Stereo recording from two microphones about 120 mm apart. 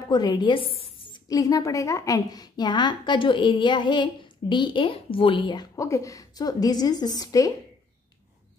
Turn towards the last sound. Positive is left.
turn(degrees=30)  # may be behind; listen again after turning